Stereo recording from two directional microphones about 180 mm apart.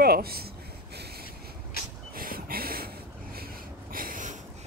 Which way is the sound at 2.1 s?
55° right (ahead or behind).